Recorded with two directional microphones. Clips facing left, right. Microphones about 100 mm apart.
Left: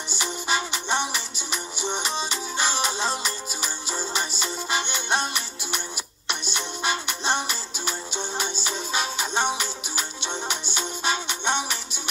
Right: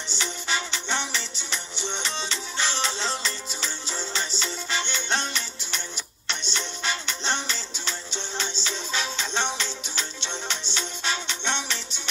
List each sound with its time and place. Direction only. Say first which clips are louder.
0.1 s music: left 3 dB; 10° left (ahead or behind)